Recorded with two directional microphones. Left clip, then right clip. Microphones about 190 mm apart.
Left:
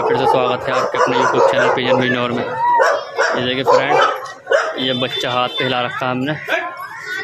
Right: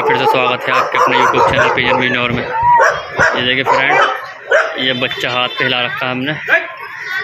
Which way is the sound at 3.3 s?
10° left (ahead or behind).